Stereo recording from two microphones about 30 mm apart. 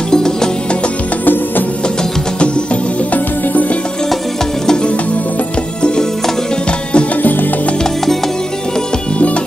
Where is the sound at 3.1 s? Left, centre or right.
Left.